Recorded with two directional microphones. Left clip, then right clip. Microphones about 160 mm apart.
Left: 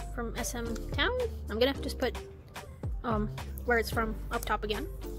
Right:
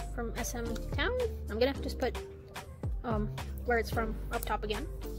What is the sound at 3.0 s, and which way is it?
A woman's voice, 10° left (ahead or behind).